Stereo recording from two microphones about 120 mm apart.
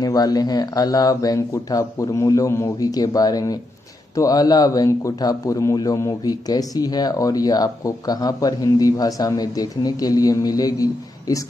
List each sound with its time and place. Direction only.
0.0 s a man's voice: 30° left (ahead or behind)